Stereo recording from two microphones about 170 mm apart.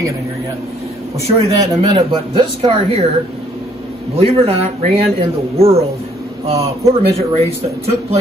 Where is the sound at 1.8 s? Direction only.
35° right (ahead or behind).